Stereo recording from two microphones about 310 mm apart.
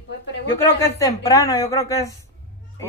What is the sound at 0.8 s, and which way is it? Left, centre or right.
Speech, centre.